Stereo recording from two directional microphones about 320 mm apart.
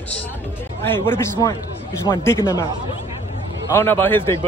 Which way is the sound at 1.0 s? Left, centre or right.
Centre.